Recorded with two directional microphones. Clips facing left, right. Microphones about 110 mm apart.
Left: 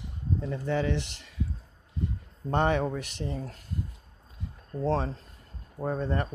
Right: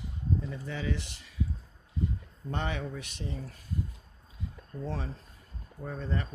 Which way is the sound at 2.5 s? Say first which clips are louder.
Left 9 dB; 50° left (ahead or behind).